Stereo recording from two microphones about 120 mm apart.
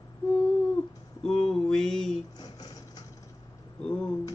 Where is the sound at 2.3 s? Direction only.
35° left (ahead or behind).